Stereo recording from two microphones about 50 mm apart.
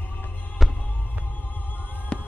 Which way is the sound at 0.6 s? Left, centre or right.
Centre.